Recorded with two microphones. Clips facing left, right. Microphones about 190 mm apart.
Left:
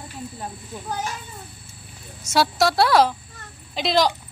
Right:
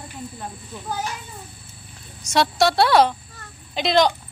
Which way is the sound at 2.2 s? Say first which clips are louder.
Right 1 dB; 5° left (ahead or behind).